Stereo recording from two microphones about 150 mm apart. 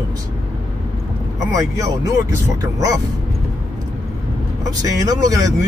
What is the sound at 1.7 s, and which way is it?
Speech, 25° right (ahead or behind).